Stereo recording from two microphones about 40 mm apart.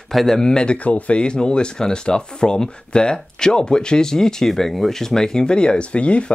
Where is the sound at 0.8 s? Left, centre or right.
Left; by 5.1 s centre.